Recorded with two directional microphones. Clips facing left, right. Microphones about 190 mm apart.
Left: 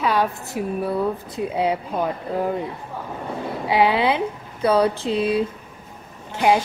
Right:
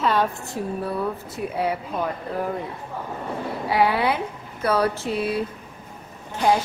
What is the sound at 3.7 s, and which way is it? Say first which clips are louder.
Speech: left 2 dB; 20° left (ahead or behind).